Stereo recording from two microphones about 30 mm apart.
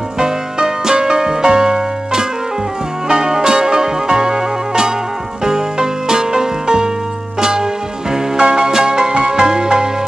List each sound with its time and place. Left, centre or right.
0.2 s music: right